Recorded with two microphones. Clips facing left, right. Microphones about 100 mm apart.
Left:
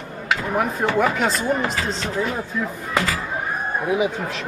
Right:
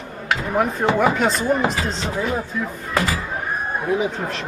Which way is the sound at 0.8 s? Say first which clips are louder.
Right 2 dB; 20° right (ahead or behind).